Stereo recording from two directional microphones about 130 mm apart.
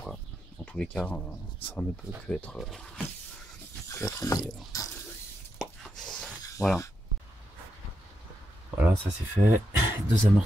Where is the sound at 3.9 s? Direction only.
20° left (ahead or behind).